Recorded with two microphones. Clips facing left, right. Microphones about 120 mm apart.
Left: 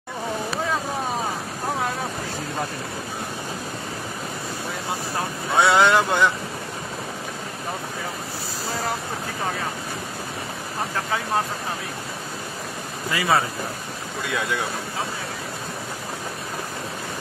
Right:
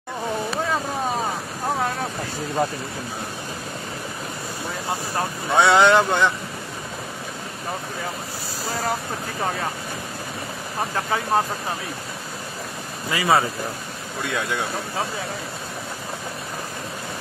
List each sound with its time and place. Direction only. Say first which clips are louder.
5.5 s speech: right 2 dB; centre (ahead or behind)
13.1 s speech: right 2 dB; 5° right (ahead or behind)